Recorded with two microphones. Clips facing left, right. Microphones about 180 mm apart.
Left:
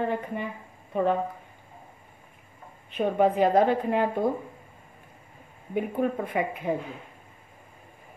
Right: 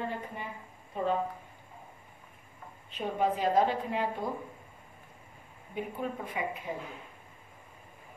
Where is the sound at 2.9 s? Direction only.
60° left (ahead or behind).